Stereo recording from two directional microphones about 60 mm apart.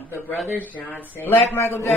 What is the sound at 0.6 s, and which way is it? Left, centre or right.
Speech, left.